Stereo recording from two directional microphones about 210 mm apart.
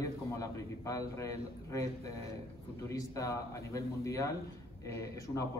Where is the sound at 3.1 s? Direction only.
15° left (ahead or behind).